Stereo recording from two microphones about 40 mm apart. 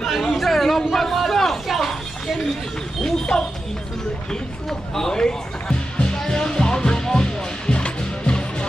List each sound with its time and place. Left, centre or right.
0.0 s chatter: centre
0.9 s a sound: centre
3.3 s speech: centre
4.3 s music: centre